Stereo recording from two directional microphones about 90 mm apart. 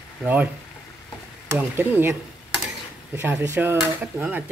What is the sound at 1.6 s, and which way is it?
Speech, 20° right (ahead or behind).